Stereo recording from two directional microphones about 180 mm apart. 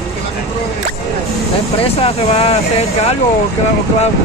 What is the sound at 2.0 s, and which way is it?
Speech, 35° left (ahead or behind).